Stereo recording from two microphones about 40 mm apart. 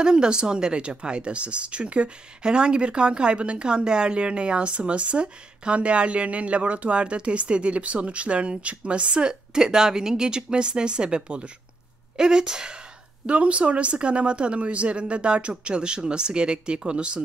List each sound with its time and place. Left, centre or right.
0.0 s speech: centre
13.3 s speech: right